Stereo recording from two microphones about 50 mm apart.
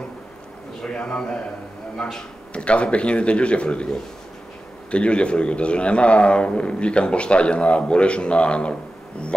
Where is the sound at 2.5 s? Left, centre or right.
Left.